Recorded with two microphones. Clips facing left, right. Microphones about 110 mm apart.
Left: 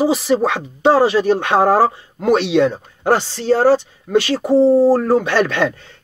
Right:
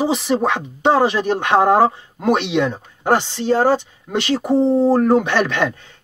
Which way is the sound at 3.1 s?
20° right (ahead or behind).